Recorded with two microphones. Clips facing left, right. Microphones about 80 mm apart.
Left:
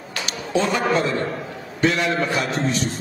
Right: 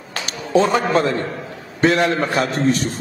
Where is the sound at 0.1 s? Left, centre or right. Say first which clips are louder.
Right 5 dB; right.